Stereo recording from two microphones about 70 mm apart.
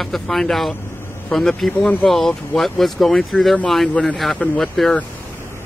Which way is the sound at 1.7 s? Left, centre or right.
Left.